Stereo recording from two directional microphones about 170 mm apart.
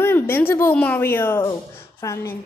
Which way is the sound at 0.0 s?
15° left (ahead or behind).